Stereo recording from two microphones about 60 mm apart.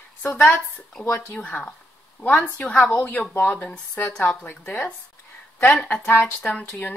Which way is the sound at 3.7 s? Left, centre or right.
Left.